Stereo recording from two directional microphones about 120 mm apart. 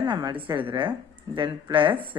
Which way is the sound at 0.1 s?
40° right (ahead or behind).